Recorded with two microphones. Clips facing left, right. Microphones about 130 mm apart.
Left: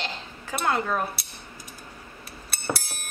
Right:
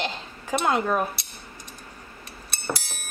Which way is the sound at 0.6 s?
15° right (ahead or behind).